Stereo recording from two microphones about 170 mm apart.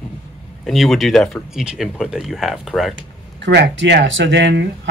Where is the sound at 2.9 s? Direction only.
85° right.